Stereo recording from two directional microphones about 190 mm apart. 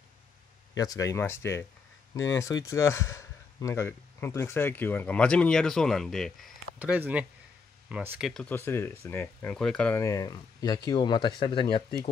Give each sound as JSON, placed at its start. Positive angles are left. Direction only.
{"t": 0.7, "sound": "speech", "side_deg": 20}